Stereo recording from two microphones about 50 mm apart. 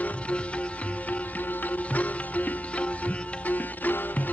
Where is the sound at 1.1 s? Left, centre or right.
Left.